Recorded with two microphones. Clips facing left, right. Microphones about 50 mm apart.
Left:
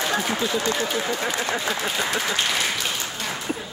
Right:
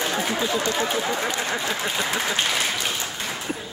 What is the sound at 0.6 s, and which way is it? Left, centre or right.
Speech, right.